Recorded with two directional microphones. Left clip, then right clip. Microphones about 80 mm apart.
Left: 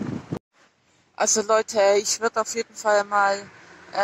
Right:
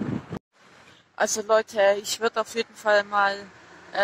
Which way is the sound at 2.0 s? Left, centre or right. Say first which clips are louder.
Left 2 dB; centre.